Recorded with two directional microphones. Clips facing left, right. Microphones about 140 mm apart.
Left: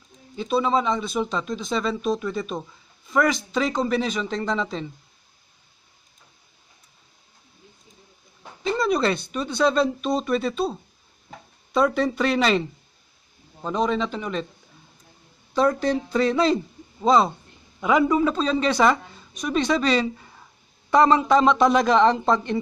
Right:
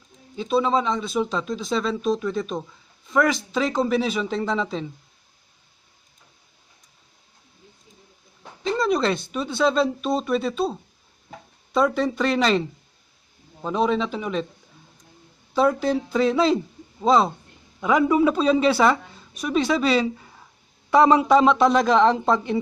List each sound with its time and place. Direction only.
0.4 s speech: centre (ahead or behind)
8.6 s speech: centre (ahead or behind)
15.5 s a man's voice: 5° right (ahead or behind)